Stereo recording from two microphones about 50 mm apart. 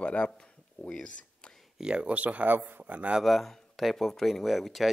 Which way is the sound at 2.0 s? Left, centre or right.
Right.